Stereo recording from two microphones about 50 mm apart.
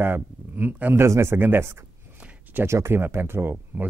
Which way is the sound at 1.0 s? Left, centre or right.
Right.